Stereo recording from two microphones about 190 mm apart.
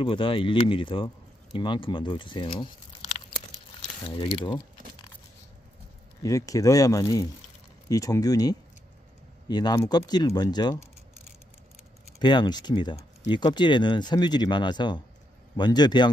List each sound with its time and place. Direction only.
0.0 s speech: 30° left (ahead or behind)
6.2 s speech: 15° left (ahead or behind)
12.2 s speech: 25° left (ahead or behind)